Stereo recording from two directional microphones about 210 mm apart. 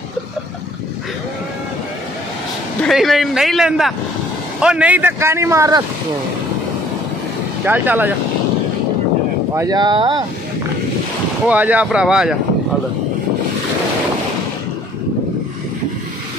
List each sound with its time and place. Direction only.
2.8 s a man's voice: centre (ahead or behind); by 5.9 s 15° right (ahead or behind)
7.6 s a man's voice: 10° right (ahead or behind)
9.6 s speech: 20° right (ahead or behind)
11.4 s a man's voice: 5° right (ahead or behind)